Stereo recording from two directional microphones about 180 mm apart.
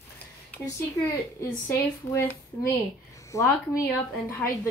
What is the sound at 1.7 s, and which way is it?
Speech, 15° left (ahead or behind).